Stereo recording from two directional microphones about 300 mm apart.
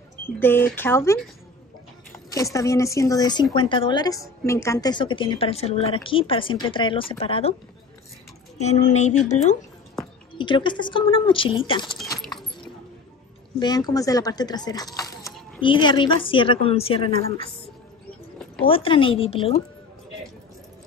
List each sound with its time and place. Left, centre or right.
0.4 s speech: centre
8.5 s speech: left
10.3 s speech: centre
13.6 s speech: centre
18.7 s speech: centre